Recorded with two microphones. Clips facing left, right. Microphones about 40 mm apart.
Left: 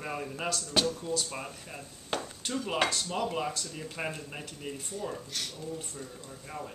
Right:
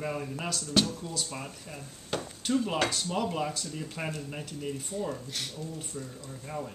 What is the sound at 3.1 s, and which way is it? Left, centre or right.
Speech, centre.